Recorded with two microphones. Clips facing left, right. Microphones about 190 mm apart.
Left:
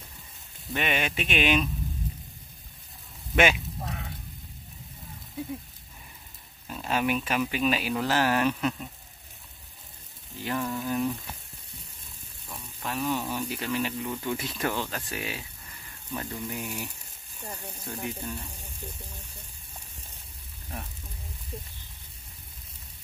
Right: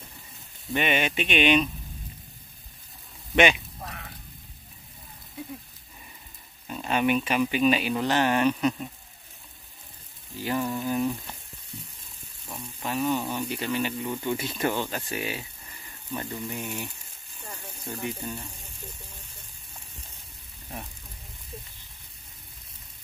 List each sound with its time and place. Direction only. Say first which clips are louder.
0.7 s speech: right 3 dB; centre (ahead or behind)
3.3 s speech: right 2 dB; 5° left (ahead or behind)
3.8 s a sound: left 2 dB; 20° left (ahead or behind)
6.7 s speech: right 3 dB; centre (ahead or behind)
10.4 s speech: right 2 dB; 5° right (ahead or behind)
12.4 s speech: right 3 dB; 5° right (ahead or behind)
18.0 s speech: right 2 dB; centre (ahead or behind)